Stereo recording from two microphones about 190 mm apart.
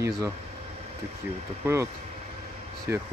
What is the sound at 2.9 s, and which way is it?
Speech, 15° right (ahead or behind).